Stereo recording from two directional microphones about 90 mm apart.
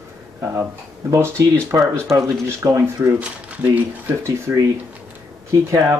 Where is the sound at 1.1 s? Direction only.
30° right (ahead or behind).